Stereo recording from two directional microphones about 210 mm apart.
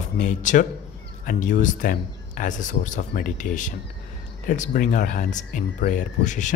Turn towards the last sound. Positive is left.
turn(degrees=35)  # may be behind; listen again after turning